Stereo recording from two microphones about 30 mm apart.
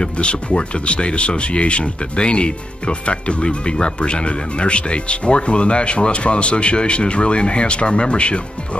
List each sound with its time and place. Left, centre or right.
0.0 s speech: left